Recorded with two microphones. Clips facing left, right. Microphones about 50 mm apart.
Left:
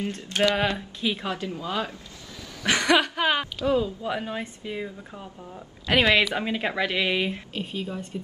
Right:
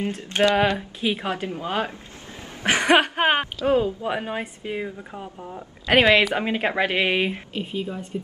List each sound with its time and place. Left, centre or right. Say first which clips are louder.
0.2 s a woman's voice: right 4 dB; right
5.9 s a woman's voice: right 4 dB; right
7.5 s speech: right 3 dB; centre